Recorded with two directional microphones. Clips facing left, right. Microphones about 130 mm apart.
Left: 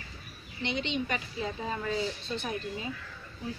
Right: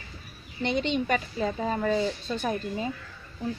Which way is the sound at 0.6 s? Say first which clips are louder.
Right 6 dB; 45° right (ahead or behind).